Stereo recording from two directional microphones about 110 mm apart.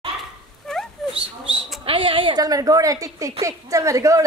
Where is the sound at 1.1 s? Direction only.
50° right (ahead or behind).